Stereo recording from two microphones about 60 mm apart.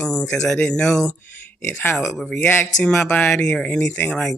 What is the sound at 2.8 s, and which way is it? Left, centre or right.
Speech, left.